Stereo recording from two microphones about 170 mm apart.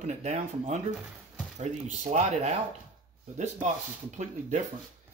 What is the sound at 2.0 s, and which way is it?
Speech, 45° right (ahead or behind).